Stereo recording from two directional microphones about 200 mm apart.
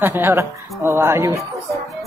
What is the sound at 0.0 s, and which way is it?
Speech, 10° right (ahead or behind).